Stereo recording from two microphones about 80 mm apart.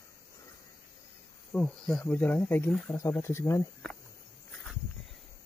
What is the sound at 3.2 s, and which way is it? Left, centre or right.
Speech, left.